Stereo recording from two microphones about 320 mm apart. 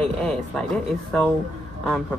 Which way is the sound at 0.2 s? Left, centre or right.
Centre.